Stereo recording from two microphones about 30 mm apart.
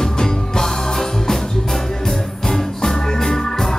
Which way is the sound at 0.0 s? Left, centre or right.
Centre.